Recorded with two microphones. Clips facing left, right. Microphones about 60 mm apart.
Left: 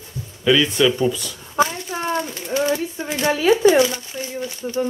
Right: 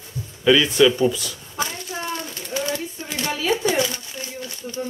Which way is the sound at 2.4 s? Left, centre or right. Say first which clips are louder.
Left 5 dB; left.